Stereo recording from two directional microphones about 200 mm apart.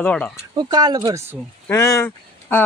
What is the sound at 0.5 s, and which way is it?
Speech, 20° right (ahead or behind).